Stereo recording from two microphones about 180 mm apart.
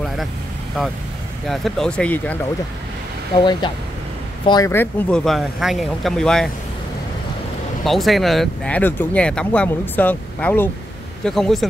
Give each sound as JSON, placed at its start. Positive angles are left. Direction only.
{"t": 1.5, "sound": "speech", "side_deg": 0}
{"t": 3.3, "sound": "speech", "side_deg": 25}
{"t": 7.8, "sound": "speech", "side_deg": 0}